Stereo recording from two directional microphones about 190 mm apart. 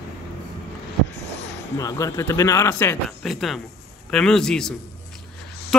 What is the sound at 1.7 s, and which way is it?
Speech, 15° left (ahead or behind).